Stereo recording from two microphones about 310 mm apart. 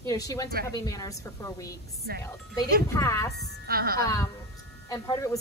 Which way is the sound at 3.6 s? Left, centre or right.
Right.